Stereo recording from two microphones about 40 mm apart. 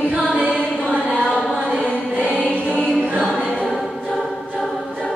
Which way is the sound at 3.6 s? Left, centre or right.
Centre.